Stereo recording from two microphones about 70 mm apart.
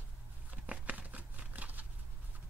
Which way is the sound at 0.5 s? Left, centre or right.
Right.